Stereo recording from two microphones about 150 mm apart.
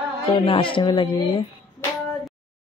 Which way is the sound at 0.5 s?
35° left (ahead or behind).